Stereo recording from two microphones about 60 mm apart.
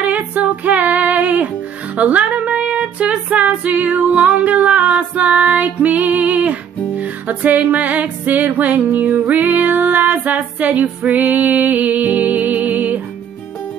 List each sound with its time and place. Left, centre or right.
0.0 s female singing: right
2.0 s music: right